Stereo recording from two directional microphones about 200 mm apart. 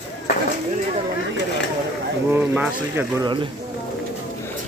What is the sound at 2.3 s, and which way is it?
Speech, 10° right (ahead or behind).